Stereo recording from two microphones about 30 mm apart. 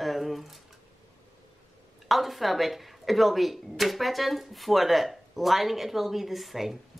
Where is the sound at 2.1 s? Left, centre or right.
Centre.